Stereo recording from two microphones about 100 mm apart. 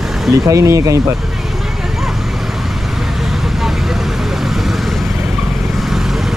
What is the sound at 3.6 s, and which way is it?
Vehicle, 5° right (ahead or behind).